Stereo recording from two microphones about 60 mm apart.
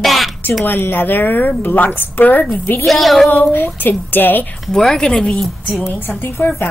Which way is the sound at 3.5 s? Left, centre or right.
Left.